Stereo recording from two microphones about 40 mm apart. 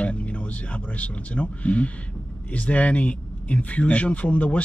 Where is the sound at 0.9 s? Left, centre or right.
Left.